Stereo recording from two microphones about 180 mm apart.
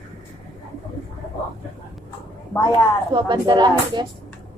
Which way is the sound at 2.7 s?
25° right (ahead or behind).